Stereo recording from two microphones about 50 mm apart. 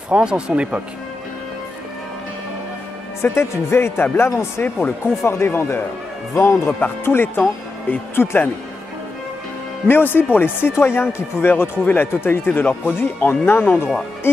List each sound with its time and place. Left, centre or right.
0.1 s speech: centre
3.2 s speech: left
4.3 s speech: left
4.6 s speech: left
5.0 s speech: left
7.1 s speech: left
9.8 s speech: left
10.7 s speech: left
12.6 s speech: left
13.3 s speech: left